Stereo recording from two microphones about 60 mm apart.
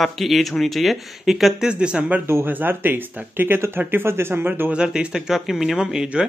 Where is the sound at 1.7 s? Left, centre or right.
Centre.